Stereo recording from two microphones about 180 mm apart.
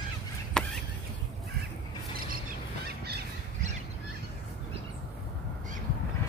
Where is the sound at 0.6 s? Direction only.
5° left (ahead or behind).